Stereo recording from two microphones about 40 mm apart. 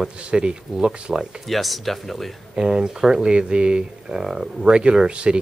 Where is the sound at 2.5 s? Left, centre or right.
Centre.